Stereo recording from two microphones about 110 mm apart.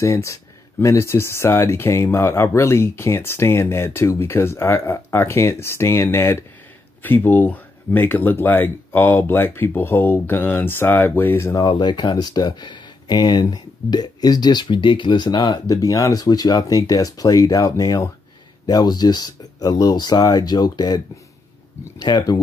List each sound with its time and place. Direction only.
0.0 s speech: 30° left (ahead or behind)
11.6 s speech: 45° left (ahead or behind)